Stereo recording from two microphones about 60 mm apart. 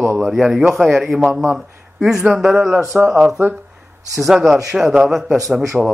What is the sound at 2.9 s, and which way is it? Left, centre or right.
Speech, right.